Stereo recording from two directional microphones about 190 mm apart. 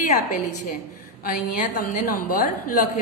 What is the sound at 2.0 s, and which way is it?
Speech, 45° left (ahead or behind).